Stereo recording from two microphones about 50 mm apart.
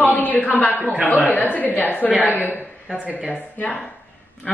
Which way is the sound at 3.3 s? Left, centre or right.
Left.